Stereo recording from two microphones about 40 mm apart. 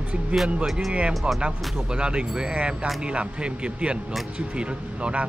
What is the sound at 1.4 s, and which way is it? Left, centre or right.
Speech, right.